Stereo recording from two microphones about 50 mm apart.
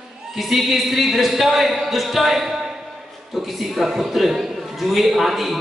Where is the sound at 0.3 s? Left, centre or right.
Centre.